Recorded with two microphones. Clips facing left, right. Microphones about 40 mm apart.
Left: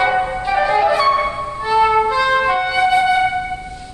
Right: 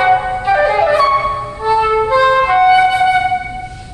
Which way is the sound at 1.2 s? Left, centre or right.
Centre.